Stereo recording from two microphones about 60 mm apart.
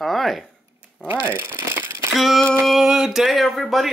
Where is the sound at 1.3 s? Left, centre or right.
Right.